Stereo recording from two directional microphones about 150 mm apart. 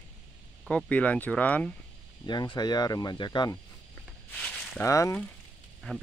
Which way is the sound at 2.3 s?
30° left (ahead or behind).